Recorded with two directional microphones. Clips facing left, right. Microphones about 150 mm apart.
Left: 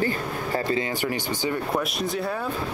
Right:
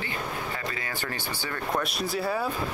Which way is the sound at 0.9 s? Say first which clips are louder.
Left 7 dB; 15° left (ahead or behind).